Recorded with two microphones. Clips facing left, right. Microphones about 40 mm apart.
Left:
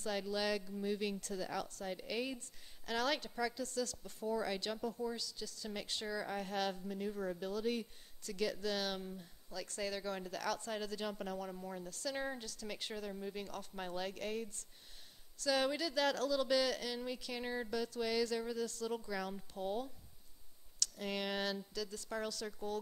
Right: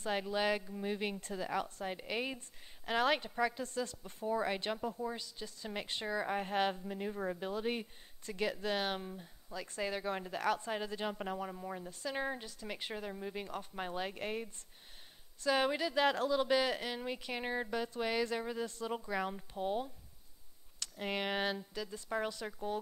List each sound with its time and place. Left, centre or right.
0.0 s a woman's voice: right
21.0 s a woman's voice: right